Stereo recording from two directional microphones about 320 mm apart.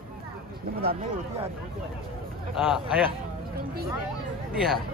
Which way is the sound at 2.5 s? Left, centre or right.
Centre.